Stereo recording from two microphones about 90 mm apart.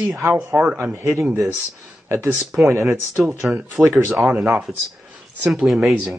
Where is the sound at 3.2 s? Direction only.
Centre (ahead or behind).